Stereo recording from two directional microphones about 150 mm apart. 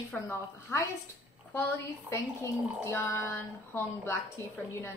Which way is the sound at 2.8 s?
15° left (ahead or behind).